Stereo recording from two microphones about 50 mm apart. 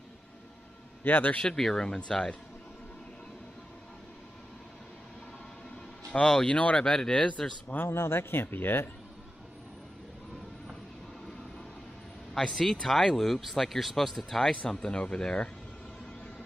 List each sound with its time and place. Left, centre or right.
1.0 s a man's voice: left
1.3 s speech: centre
6.0 s speech: centre
7.6 s speech: left
7.9 s speech: left
12.5 s speech: centre
14.7 s speech: centre